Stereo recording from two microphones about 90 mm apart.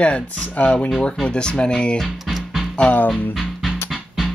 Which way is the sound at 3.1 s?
Centre (ahead or behind).